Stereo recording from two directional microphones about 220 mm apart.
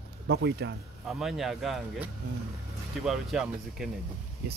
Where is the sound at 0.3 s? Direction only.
55° right (ahead or behind).